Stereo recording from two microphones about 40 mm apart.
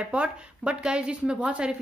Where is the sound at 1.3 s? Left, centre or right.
Right.